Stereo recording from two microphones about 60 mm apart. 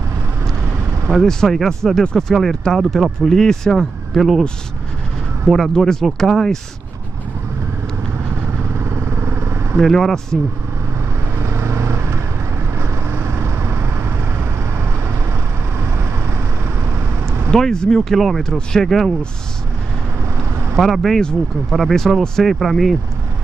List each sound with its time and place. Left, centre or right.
1.1 s speech: centre
5.5 s speech: centre
8.7 s vehicle: right
9.8 s speech: centre
11.3 s vehicle: right
17.5 s speech: centre
20.3 s vehicle: right
20.7 s speech: centre